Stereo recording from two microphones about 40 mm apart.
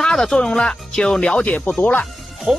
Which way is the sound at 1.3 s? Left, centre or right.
Left.